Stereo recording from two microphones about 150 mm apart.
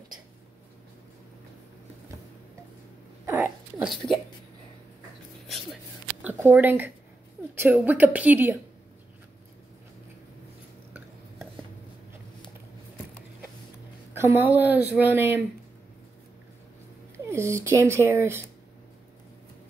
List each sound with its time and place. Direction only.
3.3 s a sound: 15° right (ahead or behind)
6.2 s speech: 10° right (ahead or behind)
14.1 s speech: 15° right (ahead or behind)
17.3 s speech: 20° right (ahead or behind)